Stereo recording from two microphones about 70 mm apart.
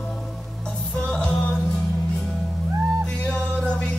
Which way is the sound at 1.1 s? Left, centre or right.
Centre.